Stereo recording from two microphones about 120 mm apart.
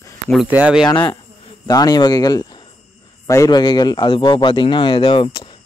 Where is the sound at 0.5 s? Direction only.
10° right (ahead or behind).